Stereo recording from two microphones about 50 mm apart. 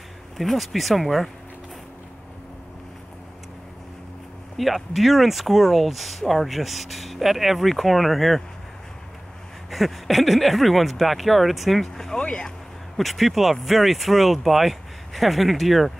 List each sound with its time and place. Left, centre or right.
0.4 s speech: centre
4.6 s speech: centre
9.7 s speech: centre
12.2 s speech: left
12.9 s speech: centre